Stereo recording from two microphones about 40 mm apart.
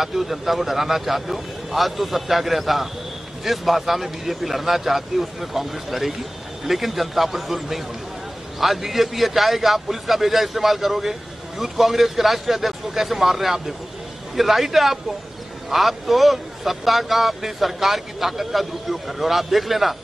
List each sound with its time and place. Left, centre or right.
0.0 s a man's voice: centre